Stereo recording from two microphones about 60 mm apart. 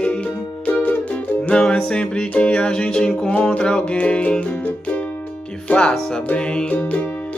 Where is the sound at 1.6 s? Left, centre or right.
Centre.